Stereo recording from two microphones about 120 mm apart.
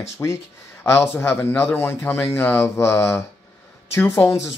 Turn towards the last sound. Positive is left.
turn(degrees=20)  # may be behind; listen again after turning